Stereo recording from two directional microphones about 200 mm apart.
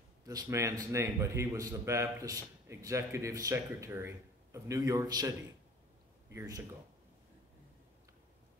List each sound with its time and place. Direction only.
0.3 s a man's voice: 15° right (ahead or behind)
6.3 s a man's voice: 15° right (ahead or behind)